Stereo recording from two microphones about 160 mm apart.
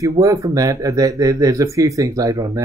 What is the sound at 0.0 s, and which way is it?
Speech, 20° right (ahead or behind).